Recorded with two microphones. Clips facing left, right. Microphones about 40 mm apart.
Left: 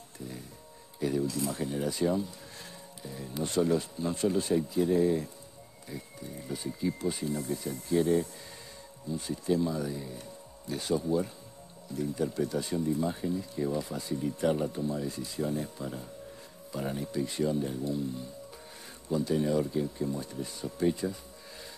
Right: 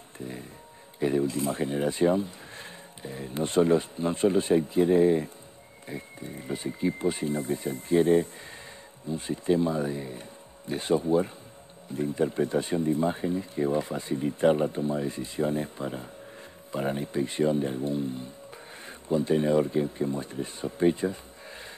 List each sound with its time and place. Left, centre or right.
0.2 s music: right
0.9 s speech: right